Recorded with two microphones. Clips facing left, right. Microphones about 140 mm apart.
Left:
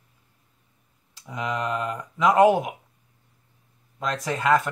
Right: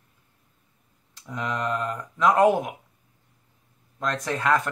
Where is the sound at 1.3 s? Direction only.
10° left (ahead or behind).